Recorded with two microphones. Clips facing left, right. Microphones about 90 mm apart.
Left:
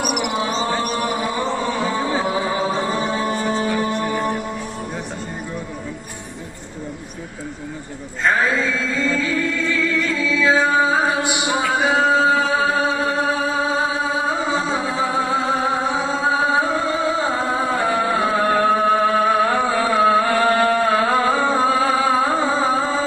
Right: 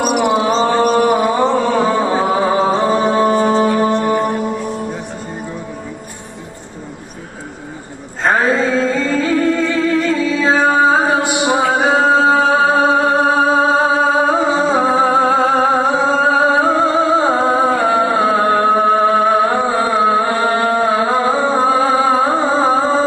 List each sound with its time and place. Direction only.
0.0 s mantra: 30° right (ahead or behind)
1.1 s music: 50° right (ahead or behind)
8.2 s music: 40° right (ahead or behind)
11.4 s chant: 40° right (ahead or behind)
15.2 s music: 50° right (ahead or behind)
16.6 s music: 40° right (ahead or behind)